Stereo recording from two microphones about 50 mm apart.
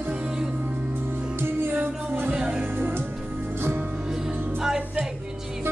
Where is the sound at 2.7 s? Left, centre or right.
Right.